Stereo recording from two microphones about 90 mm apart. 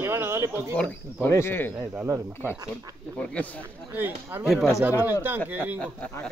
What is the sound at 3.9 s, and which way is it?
Speech, 25° right (ahead or behind).